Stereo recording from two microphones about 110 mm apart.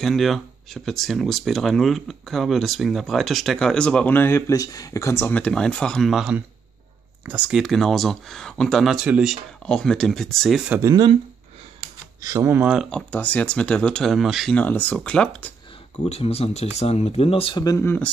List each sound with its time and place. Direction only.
0.0 s speech: centre (ahead or behind)
7.2 s speech: 10° right (ahead or behind)
7.6 s speech: centre (ahead or behind)
9.7 s speech: 5° left (ahead or behind)
10.7 s speech: 25° right (ahead or behind)
12.2 s speech: 30° right (ahead or behind)
12.9 s speech: 15° left (ahead or behind); by 14.5 s centre (ahead or behind)
14.5 s speech: 15° left (ahead or behind)
16.0 s speech: 70° left (ahead or behind)
17.6 s speech: 25° left (ahead or behind)